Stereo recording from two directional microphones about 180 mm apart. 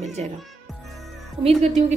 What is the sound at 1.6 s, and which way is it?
Speech, 40° right (ahead or behind).